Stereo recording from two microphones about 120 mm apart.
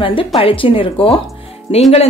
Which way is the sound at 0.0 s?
45° left (ahead or behind).